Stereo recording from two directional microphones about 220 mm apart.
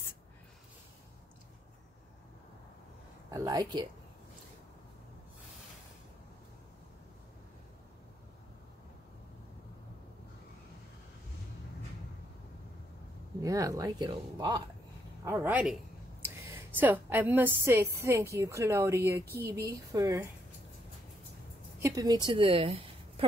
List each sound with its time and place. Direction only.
3.3 s a woman's voice: 15° right (ahead or behind)
13.4 s a woman's voice: 15° right (ahead or behind)
21.7 s a woman's voice: 15° right (ahead or behind)